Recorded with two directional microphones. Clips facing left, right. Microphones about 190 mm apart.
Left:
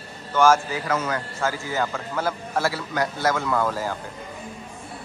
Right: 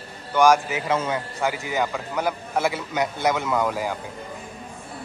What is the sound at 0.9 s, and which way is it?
A man's voice, 25° right (ahead or behind).